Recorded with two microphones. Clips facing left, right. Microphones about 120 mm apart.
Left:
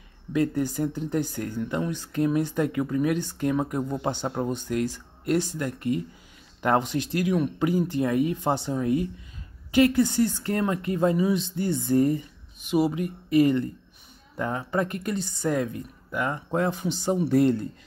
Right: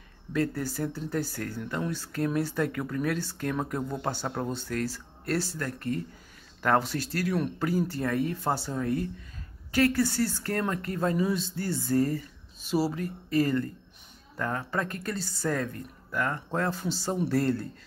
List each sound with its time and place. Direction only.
0.3 s speech: 15° left (ahead or behind)